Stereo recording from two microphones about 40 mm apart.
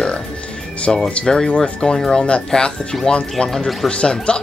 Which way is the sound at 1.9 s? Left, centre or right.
Centre.